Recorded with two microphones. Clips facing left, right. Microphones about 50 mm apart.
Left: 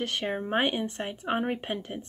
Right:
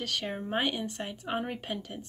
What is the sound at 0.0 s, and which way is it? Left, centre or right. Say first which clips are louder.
Speech: left 4 dB; left.